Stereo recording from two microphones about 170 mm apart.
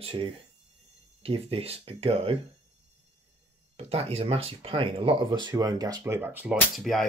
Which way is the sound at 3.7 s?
35° right (ahead or behind).